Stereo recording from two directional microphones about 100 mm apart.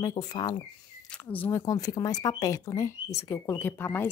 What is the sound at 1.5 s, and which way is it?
Speech, 35° left (ahead or behind).